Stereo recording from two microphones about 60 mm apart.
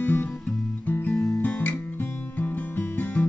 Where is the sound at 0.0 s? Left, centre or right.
Left.